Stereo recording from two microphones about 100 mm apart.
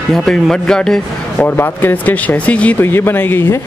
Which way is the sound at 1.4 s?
20° left (ahead or behind).